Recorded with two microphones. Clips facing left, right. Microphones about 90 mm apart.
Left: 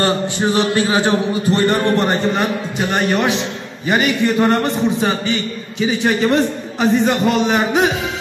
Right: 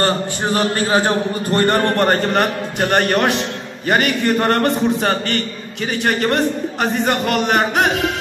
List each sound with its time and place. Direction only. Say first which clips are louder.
0.0 s a man's voice: left 2 dB; 45° right (ahead or behind); by 8.1 s 60° right (ahead or behind)